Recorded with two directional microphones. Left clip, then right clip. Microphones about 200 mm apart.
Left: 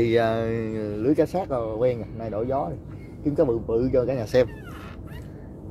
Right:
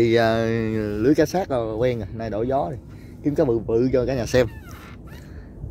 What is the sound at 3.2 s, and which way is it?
Speech, 45° right (ahead or behind).